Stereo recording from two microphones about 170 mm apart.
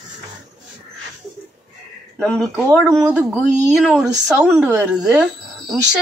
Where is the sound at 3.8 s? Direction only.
5° right (ahead or behind).